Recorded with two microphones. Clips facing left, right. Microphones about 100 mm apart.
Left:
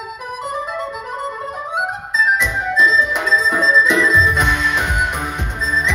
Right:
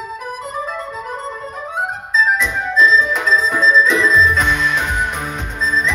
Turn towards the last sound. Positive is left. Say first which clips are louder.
# right 1 dB
turn(degrees=15)  # may be behind; listen again after turning